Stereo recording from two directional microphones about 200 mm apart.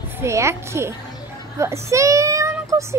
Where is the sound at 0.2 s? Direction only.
15° right (ahead or behind).